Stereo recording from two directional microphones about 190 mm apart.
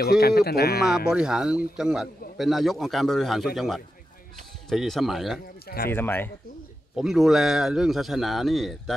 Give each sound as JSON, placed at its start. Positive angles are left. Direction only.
{"t": 0.0, "sound": "speech", "side_deg": 55}
{"t": 1.1, "sound": "speech", "side_deg": -5}
{"t": 5.9, "sound": "speech", "side_deg": 10}
{"t": 7.0, "sound": "speech", "side_deg": 0}